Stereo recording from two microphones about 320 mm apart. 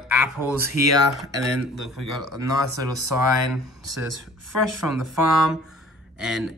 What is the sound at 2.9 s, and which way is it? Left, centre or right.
Speech, right.